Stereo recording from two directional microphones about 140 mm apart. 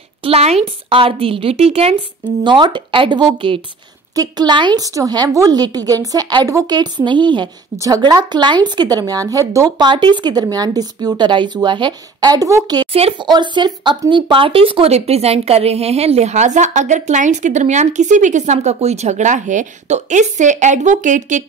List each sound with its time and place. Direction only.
0.2 s speech: 45° right (ahead or behind)
2.4 s speech: 35° right (ahead or behind)
4.1 s speech: 30° right (ahead or behind)
9.8 s speech: 35° right (ahead or behind)
12.9 s speech: 45° right (ahead or behind)
13.3 s speech: 30° right (ahead or behind); by 21.5 s 60° right (ahead or behind)